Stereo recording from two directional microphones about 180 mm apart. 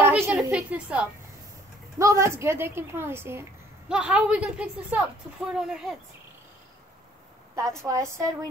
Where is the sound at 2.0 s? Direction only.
15° right (ahead or behind).